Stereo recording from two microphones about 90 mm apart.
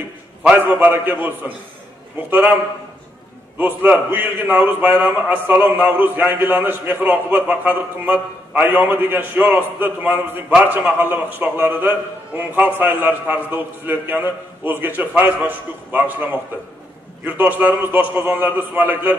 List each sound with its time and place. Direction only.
0.6 s a man's voice: 20° right (ahead or behind)
3.5 s a man's voice: 20° right (ahead or behind)